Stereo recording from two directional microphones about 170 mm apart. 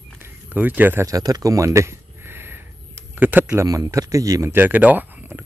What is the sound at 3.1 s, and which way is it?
Speech, 10° right (ahead or behind).